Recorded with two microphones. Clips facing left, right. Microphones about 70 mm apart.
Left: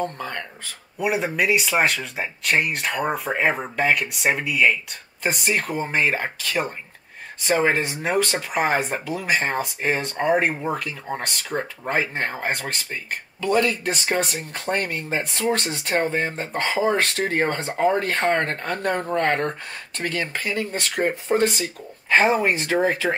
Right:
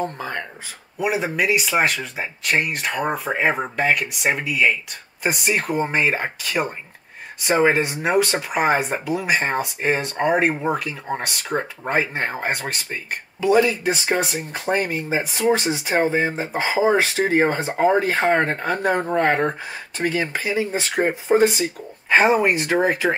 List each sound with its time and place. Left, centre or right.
0.0 s speech: centre
0.9 s speech: centre
11.4 s speech: centre
11.9 s speech: centre